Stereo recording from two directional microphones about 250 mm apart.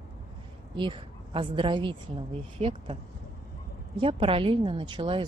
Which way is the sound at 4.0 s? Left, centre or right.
Right.